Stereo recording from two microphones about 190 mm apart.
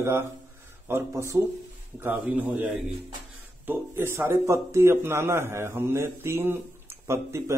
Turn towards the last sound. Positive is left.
turn(degrees=-15)  # may be behind; listen again after turning